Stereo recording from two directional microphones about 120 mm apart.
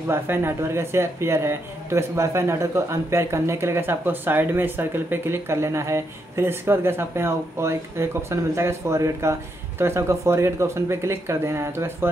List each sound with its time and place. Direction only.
0.1 s speech: 20° right (ahead or behind)